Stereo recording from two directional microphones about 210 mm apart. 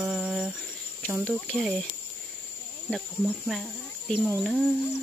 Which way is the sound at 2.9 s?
Centre (ahead or behind).